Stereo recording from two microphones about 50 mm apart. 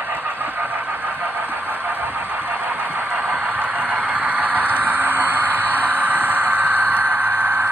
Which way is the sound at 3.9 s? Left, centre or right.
Right.